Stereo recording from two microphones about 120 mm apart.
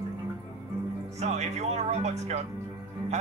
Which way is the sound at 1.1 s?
70° right (ahead or behind).